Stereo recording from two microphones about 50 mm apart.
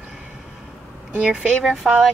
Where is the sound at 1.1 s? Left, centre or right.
Right.